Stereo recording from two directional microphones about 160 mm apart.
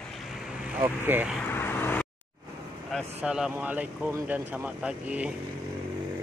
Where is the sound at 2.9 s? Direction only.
5° right (ahead or behind).